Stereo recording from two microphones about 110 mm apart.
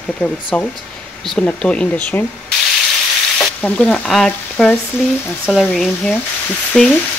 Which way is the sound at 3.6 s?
15° left (ahead or behind).